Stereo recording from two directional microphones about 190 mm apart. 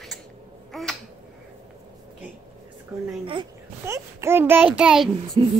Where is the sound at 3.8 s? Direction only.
15° right (ahead or behind).